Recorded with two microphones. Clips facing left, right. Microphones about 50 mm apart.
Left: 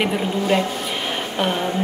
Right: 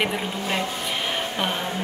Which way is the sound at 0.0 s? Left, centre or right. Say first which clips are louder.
Left 5 dB; centre.